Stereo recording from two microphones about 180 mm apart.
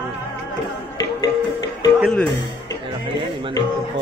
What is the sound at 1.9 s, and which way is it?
Music, centre (ahead or behind).